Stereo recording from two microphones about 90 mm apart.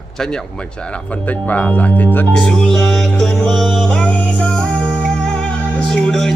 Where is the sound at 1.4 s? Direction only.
15° left (ahead or behind).